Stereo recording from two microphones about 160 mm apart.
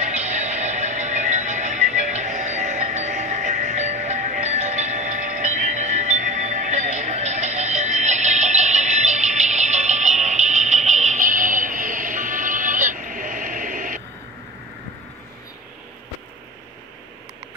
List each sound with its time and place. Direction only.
0.0 s music: 45° right (ahead or behind)